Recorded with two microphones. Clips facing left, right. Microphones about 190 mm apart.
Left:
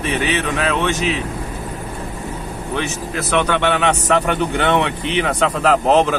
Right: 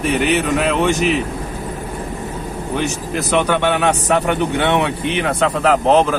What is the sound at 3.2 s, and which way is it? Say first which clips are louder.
A man's voice: right 1 dB; 10° right (ahead or behind).